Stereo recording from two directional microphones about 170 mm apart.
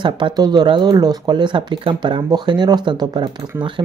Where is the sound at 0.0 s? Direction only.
25° right (ahead or behind).